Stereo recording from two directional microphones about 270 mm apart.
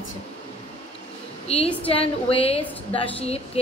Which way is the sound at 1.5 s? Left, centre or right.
Left.